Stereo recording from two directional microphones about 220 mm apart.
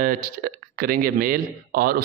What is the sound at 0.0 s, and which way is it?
A man's voice, 40° right (ahead or behind).